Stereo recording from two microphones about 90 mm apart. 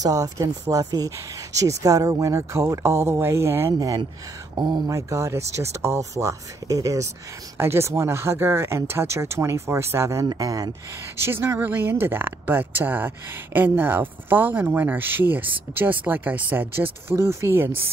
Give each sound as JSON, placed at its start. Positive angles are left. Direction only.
{"t": 0.0, "sound": "speech", "side_deg": -40}
{"t": 4.6, "sound": "speech", "side_deg": -55}
{"t": 4.8, "sound": "speech", "side_deg": -35}
{"t": 7.5, "sound": "speech", "side_deg": -30}
{"t": 10.3, "sound": "speech", "side_deg": -45}
{"t": 11.1, "sound": "speech", "side_deg": -25}